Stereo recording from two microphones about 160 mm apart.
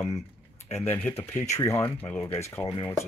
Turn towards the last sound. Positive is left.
turn(degrees=15)  # may be behind; listen again after turning